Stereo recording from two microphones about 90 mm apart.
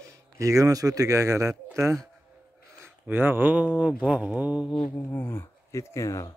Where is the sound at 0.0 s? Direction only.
35° right (ahead or behind).